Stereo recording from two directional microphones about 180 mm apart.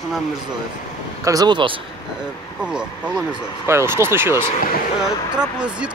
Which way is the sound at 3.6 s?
15° right (ahead or behind).